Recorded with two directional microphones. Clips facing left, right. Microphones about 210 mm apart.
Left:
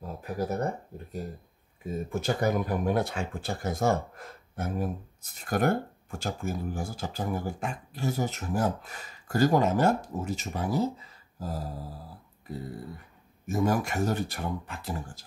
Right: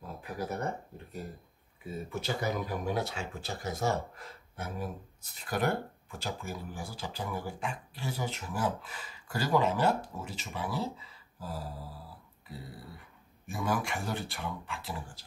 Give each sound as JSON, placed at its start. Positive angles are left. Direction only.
{"t": 0.2, "sound": "speech", "side_deg": 45}
{"t": 1.9, "sound": "speech", "side_deg": 50}
{"t": 13.5, "sound": "speech", "side_deg": 40}